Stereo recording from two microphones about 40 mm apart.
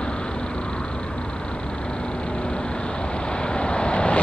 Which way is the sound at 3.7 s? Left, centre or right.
Left.